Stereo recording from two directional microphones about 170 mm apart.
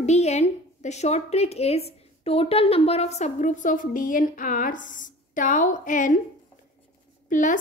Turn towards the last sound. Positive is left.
turn(degrees=50)  # may be behind; listen again after turning